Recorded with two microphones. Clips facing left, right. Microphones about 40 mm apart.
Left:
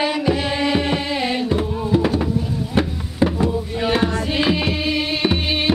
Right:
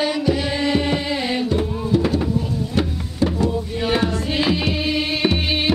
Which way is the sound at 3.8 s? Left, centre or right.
Centre.